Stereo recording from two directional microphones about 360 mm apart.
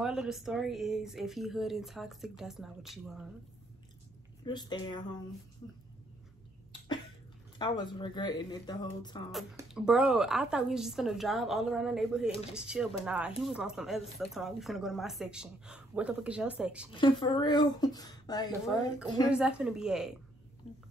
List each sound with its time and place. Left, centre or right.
0.0 s speech: centre
4.5 s speech: centre
7.5 s speech: centre
9.3 s speech: centre
16.9 s speech: centre
19.3 s speech: centre